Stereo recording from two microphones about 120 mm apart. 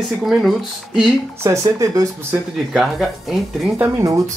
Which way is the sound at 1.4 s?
25° right (ahead or behind).